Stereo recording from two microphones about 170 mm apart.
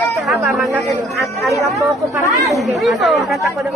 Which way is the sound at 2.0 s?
20° right (ahead or behind).